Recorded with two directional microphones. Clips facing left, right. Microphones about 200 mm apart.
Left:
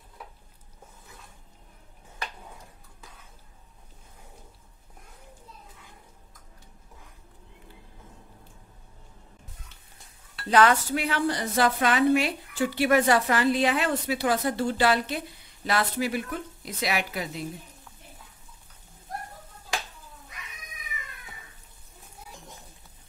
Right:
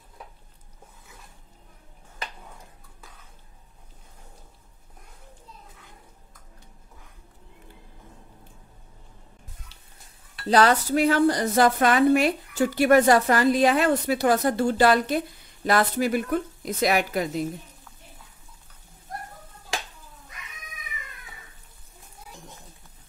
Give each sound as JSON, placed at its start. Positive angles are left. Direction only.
{"t": 10.4, "sound": "speech", "side_deg": -35}